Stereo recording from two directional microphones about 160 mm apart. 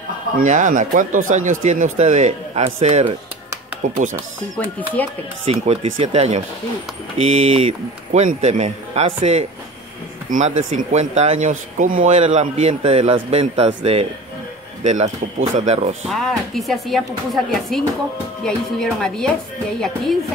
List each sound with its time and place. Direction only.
0.4 s speech: 50° right (ahead or behind)
4.6 s chopping: 10° left (ahead or behind)
5.4 s speech: 40° right (ahead or behind)
16.1 s speech: centre (ahead or behind)